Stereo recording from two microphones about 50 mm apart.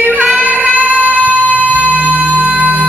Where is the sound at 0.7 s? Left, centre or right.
Right.